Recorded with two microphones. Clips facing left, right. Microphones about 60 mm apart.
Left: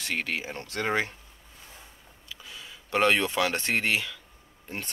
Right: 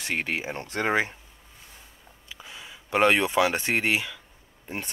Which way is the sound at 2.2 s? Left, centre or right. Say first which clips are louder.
Right 1 dB; right.